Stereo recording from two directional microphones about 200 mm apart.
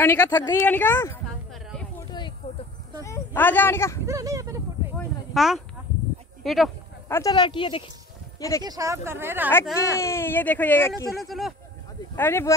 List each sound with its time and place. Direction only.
0.0 s a woman's voice: 15° left (ahead or behind)
1.5 s a sound: centre (ahead or behind)
2.0 s a sound: 20° left (ahead or behind)
3.0 s speech: 10° left (ahead or behind)
4.0 s speech: 15° right (ahead or behind)
4.9 s a sound: centre (ahead or behind)
6.4 s speech: centre (ahead or behind)
7.1 s speech: 15° left (ahead or behind)
8.6 s speech: 15° right (ahead or behind)
9.9 s a woman's voice: 15° left (ahead or behind)
12.2 s a woman's voice: 10° left (ahead or behind)